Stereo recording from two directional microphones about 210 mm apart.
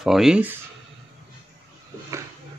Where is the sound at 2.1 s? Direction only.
15° right (ahead or behind).